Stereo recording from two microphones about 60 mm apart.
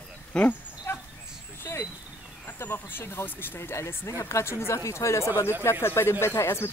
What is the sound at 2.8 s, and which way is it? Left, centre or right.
Speech, left.